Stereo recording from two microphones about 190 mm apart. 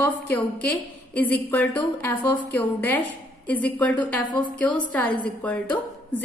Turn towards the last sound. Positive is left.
turn(degrees=5)  # may be behind; listen again after turning